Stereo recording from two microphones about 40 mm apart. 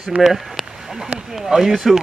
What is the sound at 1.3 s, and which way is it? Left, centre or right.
Speech, centre.